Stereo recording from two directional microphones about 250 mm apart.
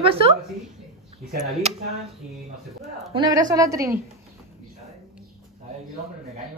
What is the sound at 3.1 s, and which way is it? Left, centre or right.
Speech, centre.